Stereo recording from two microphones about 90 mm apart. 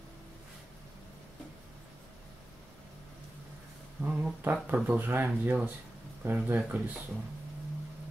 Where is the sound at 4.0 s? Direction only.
15° right (ahead or behind).